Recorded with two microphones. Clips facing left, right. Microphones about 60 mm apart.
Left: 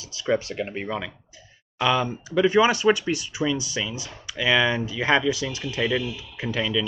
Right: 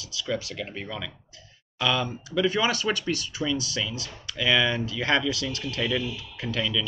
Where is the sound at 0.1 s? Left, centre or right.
Left.